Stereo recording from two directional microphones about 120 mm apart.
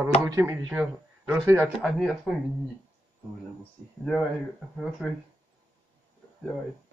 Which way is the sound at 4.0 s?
5° left (ahead or behind).